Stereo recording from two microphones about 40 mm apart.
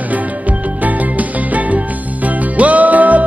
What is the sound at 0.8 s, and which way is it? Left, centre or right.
Music, right.